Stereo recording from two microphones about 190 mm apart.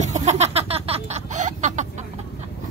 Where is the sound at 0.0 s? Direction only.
35° right (ahead or behind).